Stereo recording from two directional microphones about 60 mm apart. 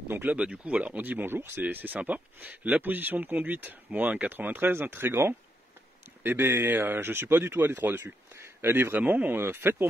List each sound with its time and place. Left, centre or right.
0.3 s speech: centre; by 8.9 s right
8.9 s speech: right